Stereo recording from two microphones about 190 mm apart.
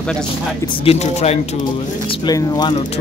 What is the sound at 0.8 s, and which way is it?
Speech, 35° left (ahead or behind).